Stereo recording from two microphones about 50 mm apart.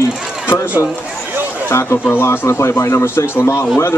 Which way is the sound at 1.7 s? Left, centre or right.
Left.